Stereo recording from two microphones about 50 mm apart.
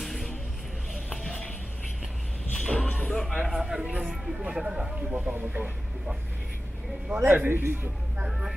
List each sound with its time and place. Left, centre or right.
0.0 s music: centre
2.5 s a sound: centre
2.9 s music: left
3.2 s a man's voice: centre
3.5 s speech: centre
3.8 s speech: right
5.1 s speech: right
7.2 s a man's voice: right
8.3 s speech: centre